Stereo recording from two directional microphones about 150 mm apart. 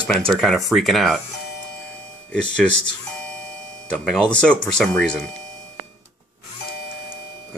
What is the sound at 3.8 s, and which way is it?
Speech, 5° left (ahead or behind).